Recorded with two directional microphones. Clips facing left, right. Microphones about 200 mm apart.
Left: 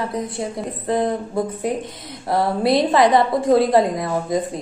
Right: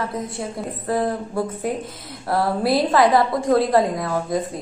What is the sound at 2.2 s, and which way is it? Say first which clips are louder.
A woman's voice: left 2 dB; centre (ahead or behind).